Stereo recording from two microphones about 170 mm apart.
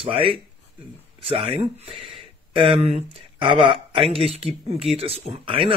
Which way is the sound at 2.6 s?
35° right (ahead or behind).